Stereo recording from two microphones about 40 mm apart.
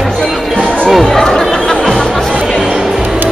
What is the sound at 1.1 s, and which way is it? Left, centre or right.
Music, centre.